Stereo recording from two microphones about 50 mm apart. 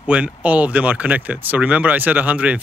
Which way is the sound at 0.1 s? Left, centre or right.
Right.